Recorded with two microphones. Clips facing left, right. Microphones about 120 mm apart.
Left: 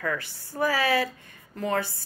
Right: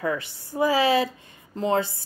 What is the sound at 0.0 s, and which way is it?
Speech, 20° right (ahead or behind).